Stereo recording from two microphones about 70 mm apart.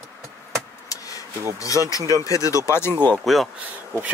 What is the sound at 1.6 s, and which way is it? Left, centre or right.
Speech, left.